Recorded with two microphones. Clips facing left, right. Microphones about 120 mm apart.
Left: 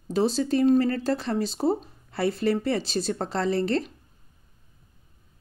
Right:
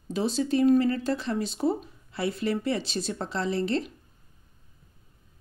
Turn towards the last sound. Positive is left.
turn(degrees=40)  # may be behind; listen again after turning